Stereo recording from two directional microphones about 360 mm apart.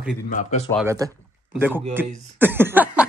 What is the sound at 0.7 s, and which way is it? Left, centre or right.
Speech, centre.